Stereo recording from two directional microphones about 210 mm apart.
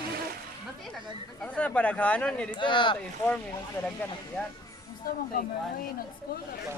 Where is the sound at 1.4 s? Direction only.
5° left (ahead or behind).